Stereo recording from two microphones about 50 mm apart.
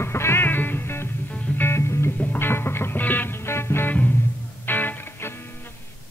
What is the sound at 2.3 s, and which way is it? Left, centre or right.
Music, left.